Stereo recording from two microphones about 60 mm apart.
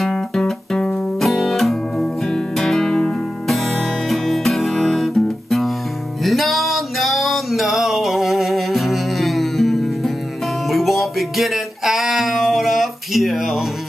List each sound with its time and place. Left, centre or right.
0.0 s guitar: centre
2.0 s music: centre
4.7 s guitar: centre
6.2 s music: centre